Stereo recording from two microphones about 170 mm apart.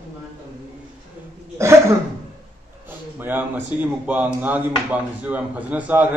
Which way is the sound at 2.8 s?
10° right (ahead or behind).